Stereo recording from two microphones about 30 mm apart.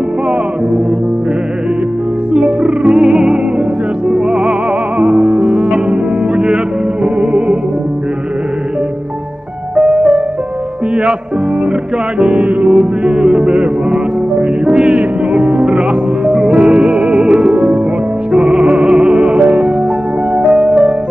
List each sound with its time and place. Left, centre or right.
2.3 s music: right
3.1 s music: right
4.9 s music: right
5.4 s music: right
5.9 s music: right
9.8 s music: right
12.2 s music: right
12.4 s music: right
12.7 s music: right
17.1 s music: right